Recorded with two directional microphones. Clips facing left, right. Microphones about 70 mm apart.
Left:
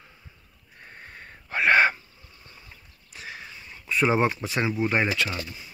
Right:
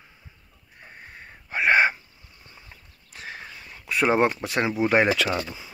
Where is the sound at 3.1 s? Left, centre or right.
Right.